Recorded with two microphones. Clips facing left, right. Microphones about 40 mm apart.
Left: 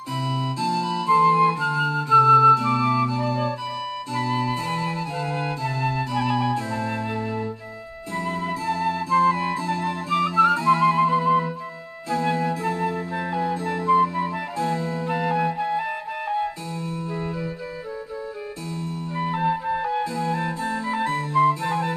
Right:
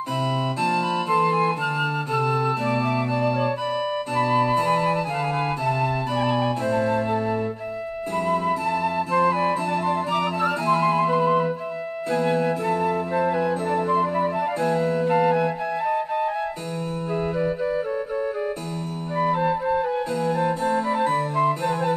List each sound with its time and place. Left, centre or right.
0.6 s flute: right
5.7 s music: right
6.1 s flute: right
8.3 s flute: right
19.3 s music: centre
20.6 s music: right
20.9 s music: left
21.2 s music: right